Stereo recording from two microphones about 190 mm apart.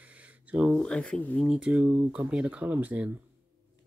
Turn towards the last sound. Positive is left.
turn(degrees=-10)  # may be behind; listen again after turning